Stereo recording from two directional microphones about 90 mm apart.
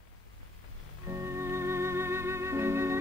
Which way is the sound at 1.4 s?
30° right (ahead or behind).